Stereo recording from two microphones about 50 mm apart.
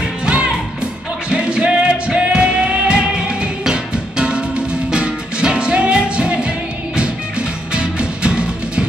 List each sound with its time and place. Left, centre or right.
1.3 s music: right
7.7 s music: centre